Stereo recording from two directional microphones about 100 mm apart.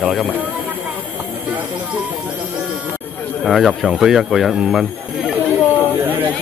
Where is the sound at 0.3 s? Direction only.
15° right (ahead or behind).